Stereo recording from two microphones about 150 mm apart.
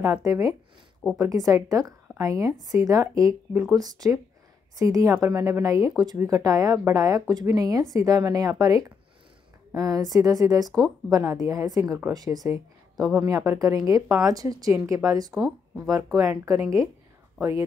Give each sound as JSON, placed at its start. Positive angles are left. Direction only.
{"t": 0.0, "sound": "speech", "side_deg": -20}
{"t": 4.7, "sound": "a woman's voice", "side_deg": -20}